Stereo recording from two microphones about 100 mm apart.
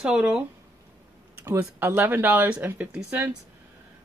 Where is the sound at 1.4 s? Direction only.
20° right (ahead or behind).